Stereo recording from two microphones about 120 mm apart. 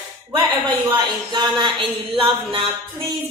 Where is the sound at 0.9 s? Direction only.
40° right (ahead or behind).